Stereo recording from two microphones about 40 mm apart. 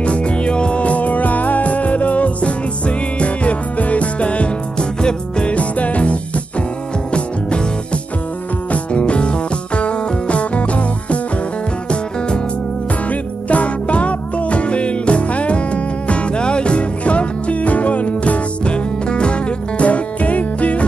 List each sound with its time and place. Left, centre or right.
0.0 s music: left
13.1 s music: left
19.0 s music: left
19.8 s music: left